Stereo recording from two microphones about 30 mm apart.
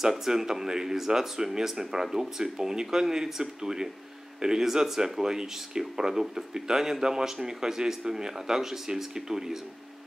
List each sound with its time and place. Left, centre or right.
0.0 s speech: centre